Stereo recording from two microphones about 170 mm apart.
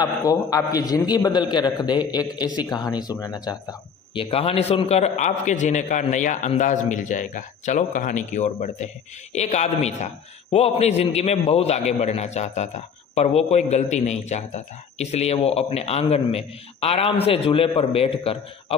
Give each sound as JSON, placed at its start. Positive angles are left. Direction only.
{"t": 0.0, "sound": "a man's voice", "side_deg": 20}
{"t": 4.1, "sound": "a man's voice", "side_deg": 30}